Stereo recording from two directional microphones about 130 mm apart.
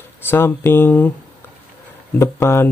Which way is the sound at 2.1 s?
20° left (ahead or behind).